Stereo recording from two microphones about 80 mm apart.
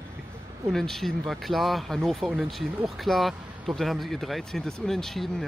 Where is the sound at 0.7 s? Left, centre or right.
Centre.